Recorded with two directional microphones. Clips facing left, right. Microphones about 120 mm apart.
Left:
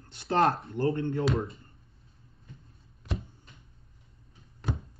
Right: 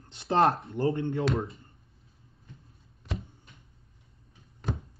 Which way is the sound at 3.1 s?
5° left (ahead or behind).